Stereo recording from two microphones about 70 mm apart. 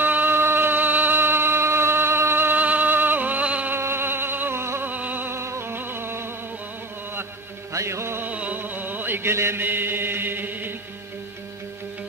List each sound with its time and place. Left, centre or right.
0.0 s music: right
3.7 s a sound: right
5.3 s music: right
7.7 s music: right
8.3 s chant: right